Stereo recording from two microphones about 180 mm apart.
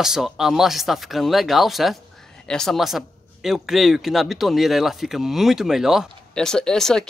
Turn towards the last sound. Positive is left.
turn(degrees=5)  # may be behind; listen again after turning